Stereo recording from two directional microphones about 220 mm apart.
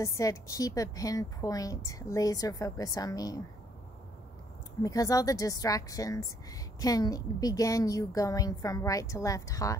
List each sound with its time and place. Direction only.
0.0 s speech: 15° left (ahead or behind)
4.8 s speech: 15° left (ahead or behind)